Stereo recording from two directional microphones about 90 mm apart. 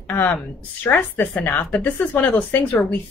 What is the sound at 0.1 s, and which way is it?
Speech, 20° left (ahead or behind).